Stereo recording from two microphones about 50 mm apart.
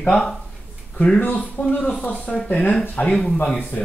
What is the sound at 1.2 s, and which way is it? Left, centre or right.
Speech, left.